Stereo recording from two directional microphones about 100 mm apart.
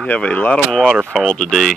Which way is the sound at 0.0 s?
15° left (ahead or behind).